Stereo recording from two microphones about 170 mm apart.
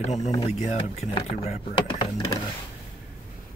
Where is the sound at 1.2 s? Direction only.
30° left (ahead or behind).